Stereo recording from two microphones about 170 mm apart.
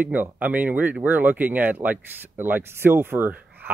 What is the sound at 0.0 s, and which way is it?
Speech, 10° right (ahead or behind).